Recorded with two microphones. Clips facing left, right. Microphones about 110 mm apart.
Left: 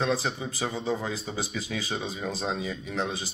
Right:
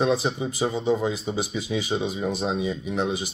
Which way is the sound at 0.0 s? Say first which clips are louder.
Right 5 dB; 20° right (ahead or behind).